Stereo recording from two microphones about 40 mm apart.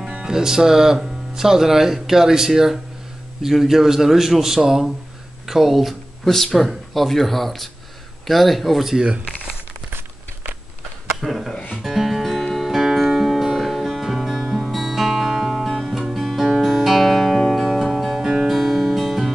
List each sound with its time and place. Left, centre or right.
0.2 s speech: centre
6.2 s speech: centre
9.8 s tearing: right
11.1 s a sound: centre
11.8 s music: centre